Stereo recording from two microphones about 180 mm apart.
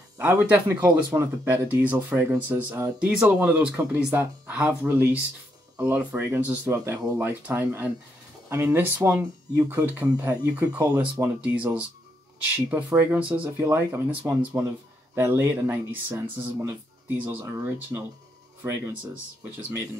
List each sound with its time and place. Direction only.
0.2 s speech: 10° right (ahead or behind)
10.8 s speech: 20° right (ahead or behind)
11.4 s speech: 5° right (ahead or behind)